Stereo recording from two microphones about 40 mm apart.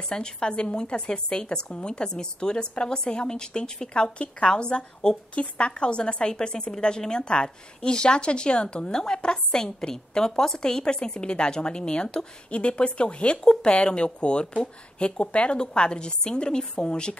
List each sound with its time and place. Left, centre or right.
0.1 s a woman's voice: left